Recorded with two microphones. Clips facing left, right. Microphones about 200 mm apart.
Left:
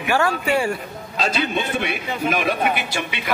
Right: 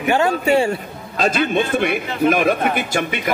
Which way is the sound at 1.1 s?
50° right (ahead or behind).